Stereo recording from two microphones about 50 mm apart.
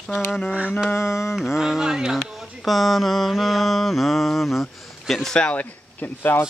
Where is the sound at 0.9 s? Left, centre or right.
Left.